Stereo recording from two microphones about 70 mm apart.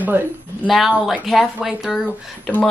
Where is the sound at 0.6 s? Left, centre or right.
Centre.